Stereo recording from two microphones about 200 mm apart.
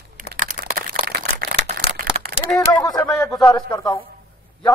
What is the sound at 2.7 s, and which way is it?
A man's voice, 20° left (ahead or behind).